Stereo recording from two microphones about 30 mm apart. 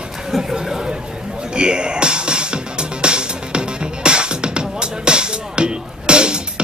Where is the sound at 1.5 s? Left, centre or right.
Right.